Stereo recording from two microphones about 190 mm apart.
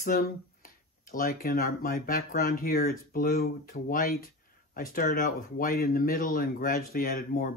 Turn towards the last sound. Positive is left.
turn(degrees=50)  # may be behind; listen again after turning